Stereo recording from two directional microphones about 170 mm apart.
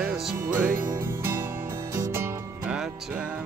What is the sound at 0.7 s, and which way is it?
Music, 55° right (ahead or behind).